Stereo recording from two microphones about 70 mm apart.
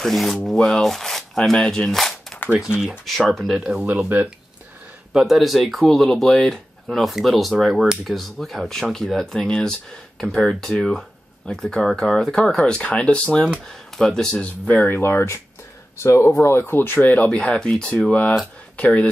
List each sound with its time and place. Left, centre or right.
0.0 s speech: centre
3.5 s speech: centre
5.1 s speech: centre
14.3 s speech: left
14.9 s speech: left
17.0 s speech: centre